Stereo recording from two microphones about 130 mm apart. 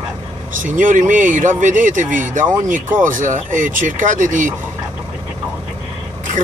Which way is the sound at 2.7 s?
90° right.